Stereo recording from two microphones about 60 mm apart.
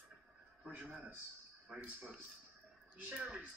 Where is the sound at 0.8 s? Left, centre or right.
Right.